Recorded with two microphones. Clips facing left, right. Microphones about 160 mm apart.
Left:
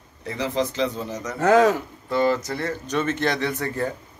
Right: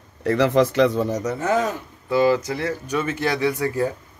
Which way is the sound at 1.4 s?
85° left.